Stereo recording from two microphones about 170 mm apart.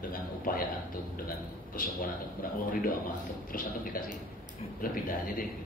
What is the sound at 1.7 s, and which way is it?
A man's voice, 55° left (ahead or behind).